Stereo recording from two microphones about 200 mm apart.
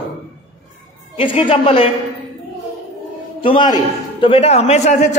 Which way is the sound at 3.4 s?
25° left (ahead or behind).